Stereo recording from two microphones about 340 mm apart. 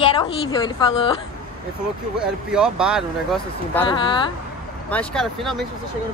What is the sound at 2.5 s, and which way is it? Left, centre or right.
Speech, centre.